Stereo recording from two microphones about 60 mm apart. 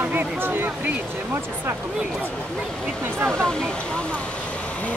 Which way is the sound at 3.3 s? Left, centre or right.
Centre.